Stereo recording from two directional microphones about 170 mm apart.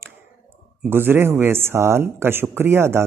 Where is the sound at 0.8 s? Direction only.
10° right (ahead or behind).